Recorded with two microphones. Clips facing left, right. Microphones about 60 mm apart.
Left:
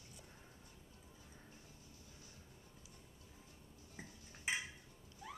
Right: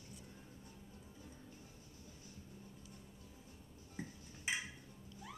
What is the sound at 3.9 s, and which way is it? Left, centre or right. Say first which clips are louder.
Cutlery: right 6 dB; centre.